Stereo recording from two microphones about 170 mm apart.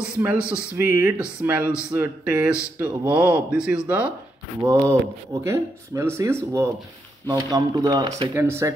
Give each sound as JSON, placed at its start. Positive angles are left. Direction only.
{"t": 0.0, "sound": "speech", "side_deg": -10}
{"t": 4.6, "sound": "speech", "side_deg": -20}